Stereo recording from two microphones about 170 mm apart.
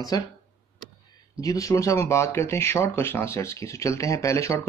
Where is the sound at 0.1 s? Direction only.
20° left (ahead or behind).